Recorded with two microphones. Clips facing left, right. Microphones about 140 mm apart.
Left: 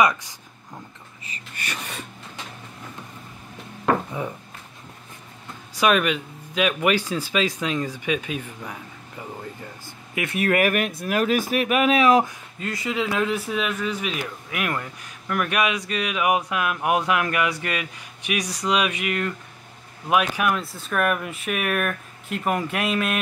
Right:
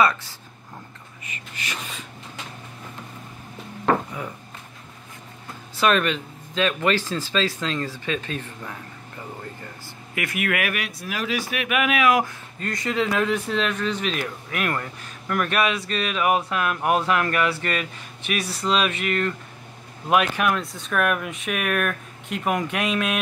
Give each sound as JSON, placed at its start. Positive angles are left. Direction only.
{"t": 0.0, "sound": "speech", "side_deg": 15}
{"t": 5.8, "sound": "speech", "side_deg": 10}
{"t": 10.1, "sound": "speech", "side_deg": 25}
{"t": 12.5, "sound": "speech", "side_deg": 5}